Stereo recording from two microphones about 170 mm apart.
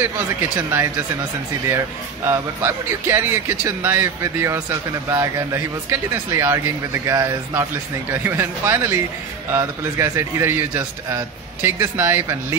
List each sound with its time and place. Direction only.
0.0 s speech: 15° right (ahead or behind)
2.2 s speech: 15° right (ahead or behind)